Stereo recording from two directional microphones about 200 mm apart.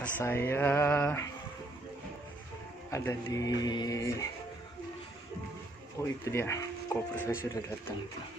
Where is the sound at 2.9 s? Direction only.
15° left (ahead or behind).